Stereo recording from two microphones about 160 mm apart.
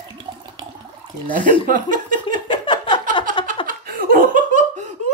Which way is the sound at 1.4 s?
55° right (ahead or behind).